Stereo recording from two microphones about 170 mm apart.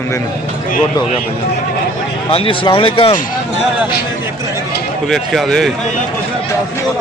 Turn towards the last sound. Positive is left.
turn(degrees=0)  # may be behind; listen again after turning